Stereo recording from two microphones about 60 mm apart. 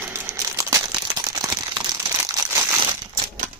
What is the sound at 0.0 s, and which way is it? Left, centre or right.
Crumpling, right.